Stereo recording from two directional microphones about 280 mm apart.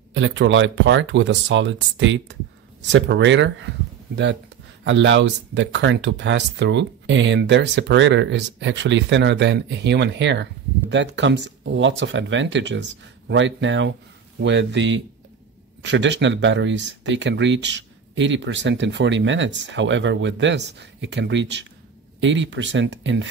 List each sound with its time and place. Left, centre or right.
0.1 s speech: right